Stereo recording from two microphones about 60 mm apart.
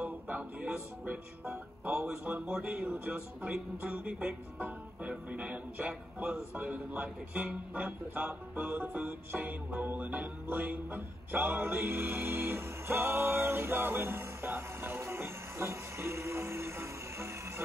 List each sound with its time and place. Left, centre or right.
0.0 s music: right
2.6 s a man's voice: right
8.5 s music: right
8.8 s music: right